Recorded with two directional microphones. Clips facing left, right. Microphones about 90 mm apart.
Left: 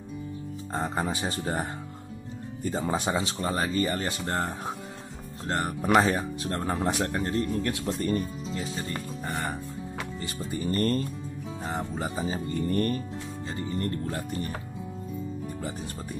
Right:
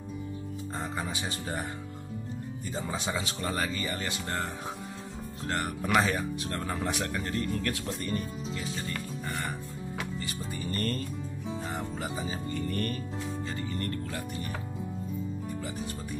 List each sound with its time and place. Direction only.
0.7 s speech: 40° left (ahead or behind)